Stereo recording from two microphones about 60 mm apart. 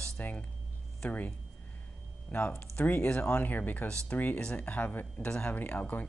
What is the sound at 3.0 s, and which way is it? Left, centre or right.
Speech, centre.